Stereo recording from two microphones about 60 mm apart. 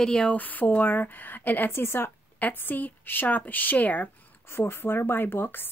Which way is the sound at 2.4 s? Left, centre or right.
Left.